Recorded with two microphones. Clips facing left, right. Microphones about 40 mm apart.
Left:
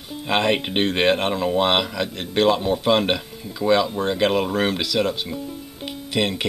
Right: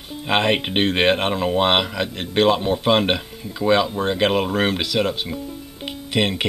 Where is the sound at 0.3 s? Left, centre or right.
Centre.